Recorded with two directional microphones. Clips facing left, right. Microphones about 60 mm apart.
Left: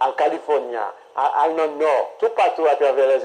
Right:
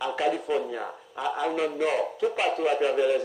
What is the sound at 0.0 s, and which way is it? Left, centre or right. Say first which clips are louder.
A man's voice: left 8 dB; left.